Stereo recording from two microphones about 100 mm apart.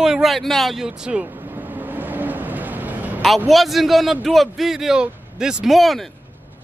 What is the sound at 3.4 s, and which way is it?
A man's voice, centre (ahead or behind).